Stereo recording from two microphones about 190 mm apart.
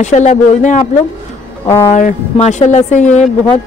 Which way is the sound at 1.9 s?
40° left (ahead or behind).